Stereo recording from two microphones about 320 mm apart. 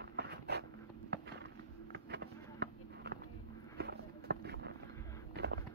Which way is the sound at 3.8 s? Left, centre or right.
Right.